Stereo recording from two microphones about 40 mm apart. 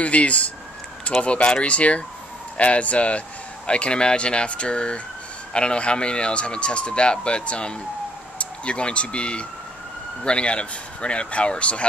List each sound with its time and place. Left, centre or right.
0.0 s a man's voice: left